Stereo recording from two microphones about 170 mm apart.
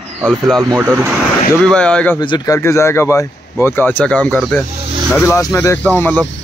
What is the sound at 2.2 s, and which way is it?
Speech, 30° left (ahead or behind).